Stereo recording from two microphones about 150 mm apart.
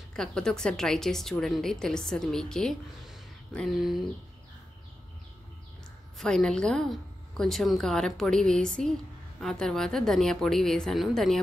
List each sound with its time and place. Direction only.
0.1 s a woman's voice: 5° left (ahead or behind)
6.1 s a woman's voice: 5° left (ahead or behind)